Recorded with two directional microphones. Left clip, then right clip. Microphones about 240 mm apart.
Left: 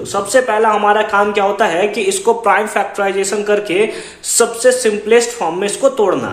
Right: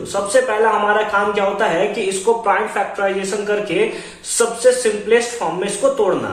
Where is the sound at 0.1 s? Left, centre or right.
Left.